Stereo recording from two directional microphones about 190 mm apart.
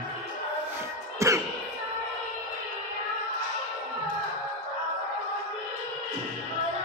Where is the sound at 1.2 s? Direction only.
15° right (ahead or behind).